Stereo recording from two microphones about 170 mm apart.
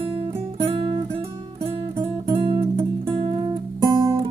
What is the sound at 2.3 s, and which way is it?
Music, 30° right (ahead or behind).